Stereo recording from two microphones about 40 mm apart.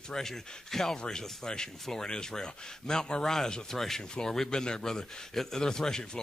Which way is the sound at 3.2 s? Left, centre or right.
Centre.